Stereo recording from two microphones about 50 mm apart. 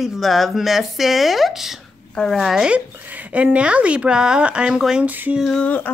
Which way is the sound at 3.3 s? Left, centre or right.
Right.